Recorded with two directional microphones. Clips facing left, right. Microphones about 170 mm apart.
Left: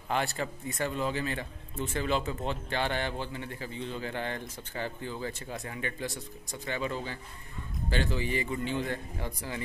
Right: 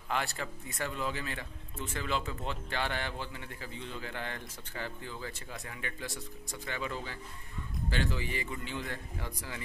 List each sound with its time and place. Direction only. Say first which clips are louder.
0.1 s a man's voice: left 4 dB; 25° left (ahead or behind)